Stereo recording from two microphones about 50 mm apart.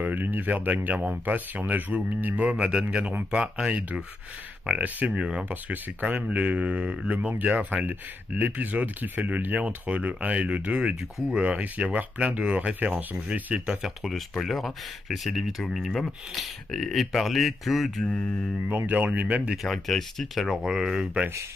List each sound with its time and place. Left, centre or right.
0.0 s speech: right
2.5 s speech: right
5.5 s speech: right
7.2 s speech: right
13.8 s speech: centre
18.7 s speech: right
19.5 s speech: centre
20.5 s speech: centre